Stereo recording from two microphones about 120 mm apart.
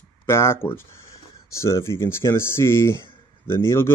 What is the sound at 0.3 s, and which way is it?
Speech, 20° left (ahead or behind).